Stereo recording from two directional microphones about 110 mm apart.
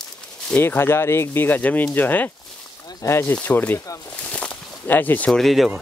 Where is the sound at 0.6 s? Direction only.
20° left (ahead or behind); by 5.7 s centre (ahead or behind).